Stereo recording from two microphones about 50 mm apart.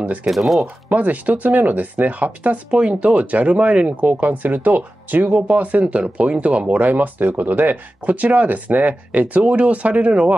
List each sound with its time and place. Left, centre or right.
0.0 s speech: right
0.3 s speech: centre
0.8 s speech: right
6.8 s speech: right